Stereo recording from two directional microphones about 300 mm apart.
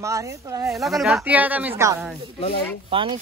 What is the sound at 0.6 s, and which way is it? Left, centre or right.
A man's voice, centre.